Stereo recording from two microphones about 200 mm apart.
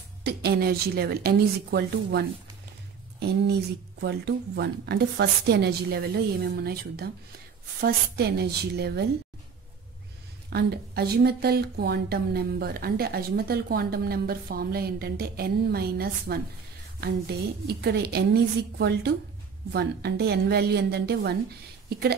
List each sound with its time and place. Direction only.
0.2 s speech: 55° right (ahead or behind)
10.5 s speech: 50° right (ahead or behind)